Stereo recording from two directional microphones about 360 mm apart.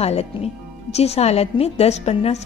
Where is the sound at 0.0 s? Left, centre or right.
Centre.